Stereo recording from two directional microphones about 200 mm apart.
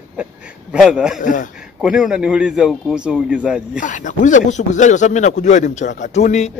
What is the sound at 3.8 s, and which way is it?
Speech, 40° left (ahead or behind).